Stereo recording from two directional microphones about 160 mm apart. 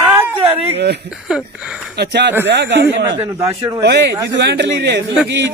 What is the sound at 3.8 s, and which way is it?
Speech, 90° right.